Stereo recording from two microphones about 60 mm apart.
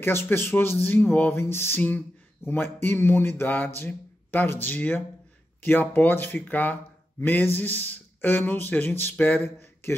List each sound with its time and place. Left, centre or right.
0.0 s speech: left
1.3 s music: left
1.8 s speech: left
2.4 s speech: left